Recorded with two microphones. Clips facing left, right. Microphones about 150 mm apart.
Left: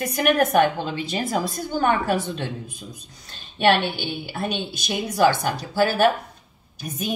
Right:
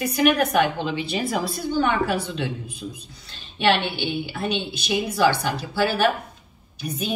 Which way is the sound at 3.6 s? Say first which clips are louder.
Left 2 dB; 45° left (ahead or behind).